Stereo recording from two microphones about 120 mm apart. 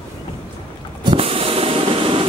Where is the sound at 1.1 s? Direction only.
50° right (ahead or behind).